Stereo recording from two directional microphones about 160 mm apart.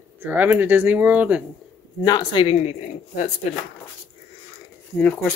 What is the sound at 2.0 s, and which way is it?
Speech, 25° left (ahead or behind).